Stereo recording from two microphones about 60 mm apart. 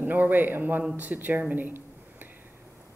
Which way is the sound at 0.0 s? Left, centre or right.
Right.